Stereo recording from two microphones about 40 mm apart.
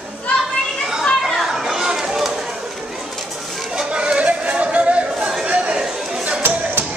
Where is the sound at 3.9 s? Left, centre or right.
Right.